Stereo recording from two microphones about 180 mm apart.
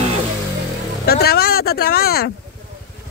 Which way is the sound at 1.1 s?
60° left (ahead or behind).